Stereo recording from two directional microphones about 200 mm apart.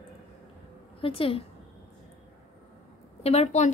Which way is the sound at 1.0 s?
30° left (ahead or behind).